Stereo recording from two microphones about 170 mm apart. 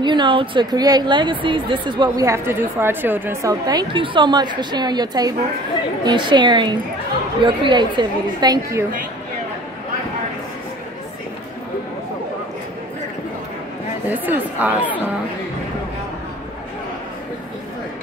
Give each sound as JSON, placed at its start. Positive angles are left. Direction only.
{"t": 0.0, "sound": "speech", "side_deg": -25}
{"t": 14.0, "sound": "speech", "side_deg": -10}